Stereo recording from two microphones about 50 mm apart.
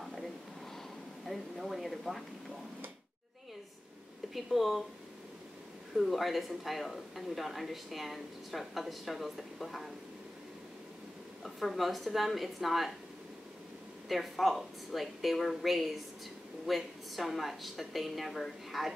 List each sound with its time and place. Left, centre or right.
0.0 s a sound: centre
1.2 s a man's voice: centre
4.3 s a man's voice: centre
5.9 s a man's voice: centre
11.4 s a man's voice: centre
14.0 s a man's voice: centre